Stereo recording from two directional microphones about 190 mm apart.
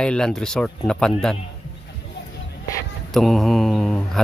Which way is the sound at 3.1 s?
Centre (ahead or behind).